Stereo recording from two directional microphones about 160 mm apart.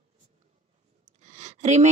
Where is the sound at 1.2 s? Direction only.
45° right (ahead or behind).